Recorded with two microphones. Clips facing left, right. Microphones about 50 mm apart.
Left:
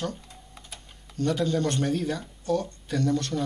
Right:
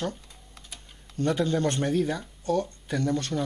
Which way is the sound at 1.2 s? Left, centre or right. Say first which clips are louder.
Even; right.